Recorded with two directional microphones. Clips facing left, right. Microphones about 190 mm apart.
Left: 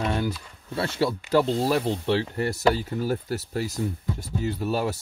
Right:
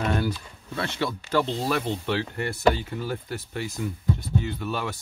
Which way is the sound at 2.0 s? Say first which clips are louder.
Left 3 dB; 35° left (ahead or behind).